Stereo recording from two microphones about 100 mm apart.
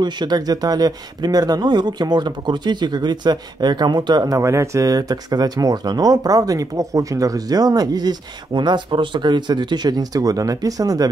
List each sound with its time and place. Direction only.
0.0 s speech: 45° right (ahead or behind)